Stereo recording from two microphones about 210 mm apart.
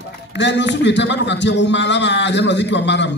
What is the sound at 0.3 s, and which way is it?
A man's voice, 55° left (ahead or behind).